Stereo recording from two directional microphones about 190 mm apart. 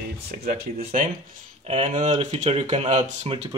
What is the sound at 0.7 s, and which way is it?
Speech, 40° right (ahead or behind).